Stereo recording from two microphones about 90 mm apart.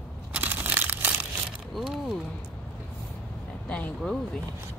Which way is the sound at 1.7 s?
5° right (ahead or behind).